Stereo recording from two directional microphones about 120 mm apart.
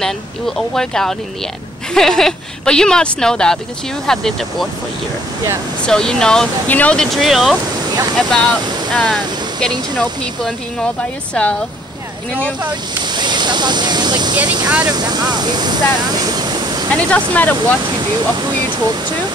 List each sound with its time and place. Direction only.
0.6 s speech: 5° left (ahead or behind)
5.9 s speech: 5° left (ahead or behind)
13.0 s speech: 40° right (ahead or behind)
17.1 s speech: 15° left (ahead or behind)
17.8 s speech: 40° right (ahead or behind)